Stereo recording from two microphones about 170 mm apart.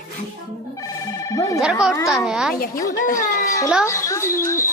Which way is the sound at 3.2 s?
20° left (ahead or behind).